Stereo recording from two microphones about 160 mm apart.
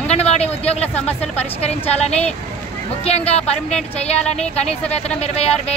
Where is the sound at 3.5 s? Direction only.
5° left (ahead or behind).